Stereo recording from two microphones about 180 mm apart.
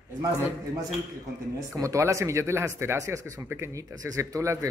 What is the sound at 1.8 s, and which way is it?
Speech, 15° right (ahead or behind).